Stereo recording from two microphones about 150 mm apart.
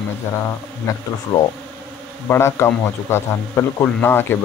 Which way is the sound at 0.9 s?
20° left (ahead or behind).